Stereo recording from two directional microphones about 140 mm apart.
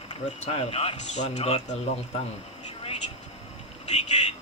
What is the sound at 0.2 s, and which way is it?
Speech, 50° left (ahead or behind).